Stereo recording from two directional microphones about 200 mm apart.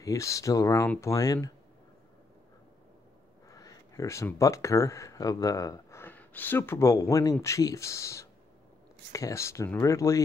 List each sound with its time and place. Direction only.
0.0 s speech: 15° left (ahead or behind)
3.4 s speech: 15° left (ahead or behind)